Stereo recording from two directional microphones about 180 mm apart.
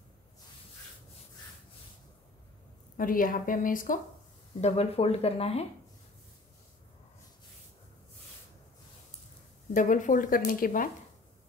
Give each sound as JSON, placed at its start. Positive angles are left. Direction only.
{"t": 3.0, "sound": "speech", "side_deg": 50}
{"t": 4.6, "sound": "speech", "side_deg": 35}
{"t": 9.8, "sound": "speech", "side_deg": 45}